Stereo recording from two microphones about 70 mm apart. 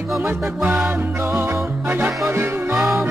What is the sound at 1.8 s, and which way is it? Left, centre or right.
Music, right.